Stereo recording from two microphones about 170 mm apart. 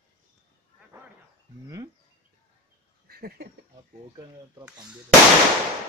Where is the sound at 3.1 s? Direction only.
60° right (ahead or behind).